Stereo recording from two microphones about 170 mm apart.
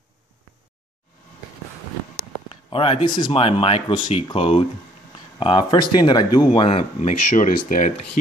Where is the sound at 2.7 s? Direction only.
35° left (ahead or behind).